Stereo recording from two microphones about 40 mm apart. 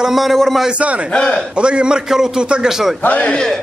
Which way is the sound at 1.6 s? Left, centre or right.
Right.